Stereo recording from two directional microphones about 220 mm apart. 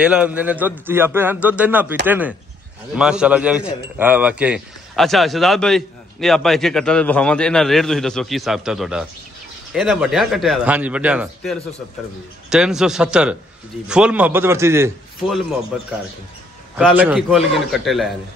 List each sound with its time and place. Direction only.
0.0 s a man's voice: 5° right (ahead or behind)